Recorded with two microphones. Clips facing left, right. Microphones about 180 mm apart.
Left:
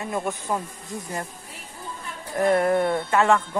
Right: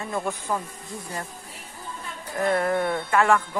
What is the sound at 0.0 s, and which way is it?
Speech, 15° left (ahead or behind).